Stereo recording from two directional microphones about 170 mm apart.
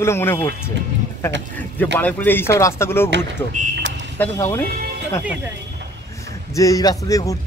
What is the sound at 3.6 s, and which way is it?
Speech, 50° right (ahead or behind).